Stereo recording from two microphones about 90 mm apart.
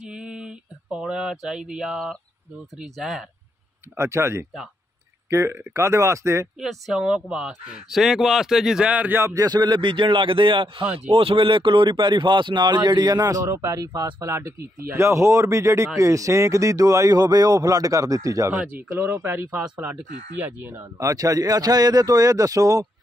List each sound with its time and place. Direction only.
0.0 s a sound: 10° right (ahead or behind)
2.8 s speech: centre (ahead or behind)
3.9 s speech: 30° right (ahead or behind)
6.6 s speech: centre (ahead or behind); by 9.3 s 20° right (ahead or behind)
9.3 s speech: 40° right (ahead or behind)
9.6 s a man's voice: 60° right (ahead or behind)
11.0 s speech: 90° right; by 18.5 s 40° right (ahead or behind)
18.5 s speech: 15° right (ahead or behind)
18.9 s speech: 25° right (ahead or behind)
20.8 s speech: 35° right (ahead or behind)